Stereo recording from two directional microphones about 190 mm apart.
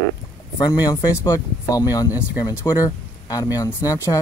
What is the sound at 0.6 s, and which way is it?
Speech, 20° left (ahead or behind).